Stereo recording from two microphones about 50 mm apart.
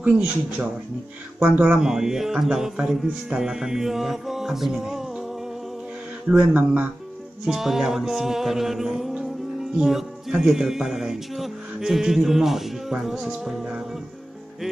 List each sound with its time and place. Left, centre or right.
0.0 s speech: right
1.8 s music: centre
6.5 s speech: right
7.4 s music: centre